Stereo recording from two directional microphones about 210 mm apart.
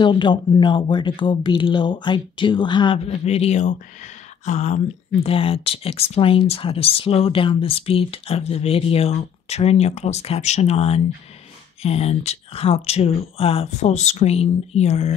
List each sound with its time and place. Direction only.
0.0 s speech: 20° left (ahead or behind)